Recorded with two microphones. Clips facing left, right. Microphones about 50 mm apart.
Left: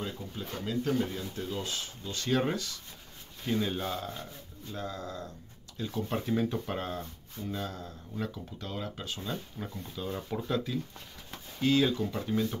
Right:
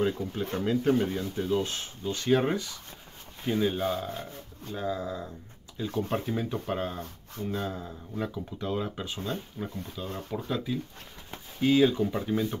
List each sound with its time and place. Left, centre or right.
0.0 s speech: right
2.1 s speech: centre
7.5 s speech: centre
10.0 s speech: centre